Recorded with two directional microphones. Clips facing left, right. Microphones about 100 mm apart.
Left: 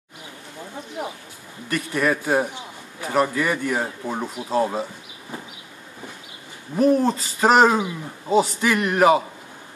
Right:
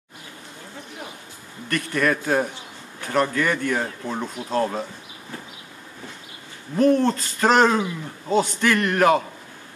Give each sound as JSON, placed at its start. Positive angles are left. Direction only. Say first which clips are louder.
{"t": 1.0, "sound": "a sound", "louder": "left 9 dB", "side_deg": 25}
{"t": 1.7, "sound": "a man's voice", "louder": "even", "side_deg": 5}
{"t": 6.8, "sound": "speech", "louder": "even", "side_deg": 5}